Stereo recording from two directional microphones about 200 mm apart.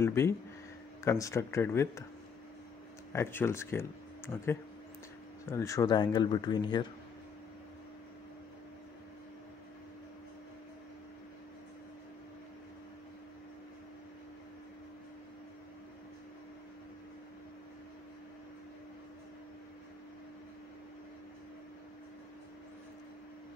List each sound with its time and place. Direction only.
0.0 s speech: 15° left (ahead or behind)
3.1 s speech: 10° left (ahead or behind)